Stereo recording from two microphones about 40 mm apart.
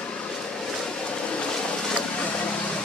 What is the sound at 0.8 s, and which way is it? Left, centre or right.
Vehicle, left.